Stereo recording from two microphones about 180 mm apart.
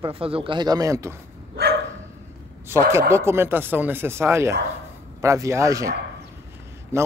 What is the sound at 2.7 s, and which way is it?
Speech, 15° right (ahead or behind).